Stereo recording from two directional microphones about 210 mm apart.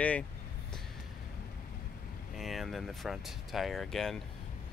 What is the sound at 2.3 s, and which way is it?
Speech, centre (ahead or behind).